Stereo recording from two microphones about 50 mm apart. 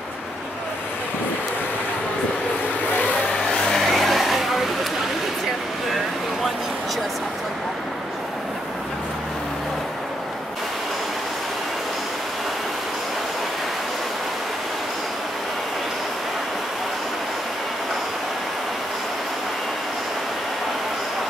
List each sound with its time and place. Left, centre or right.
3.6 s vehicle: centre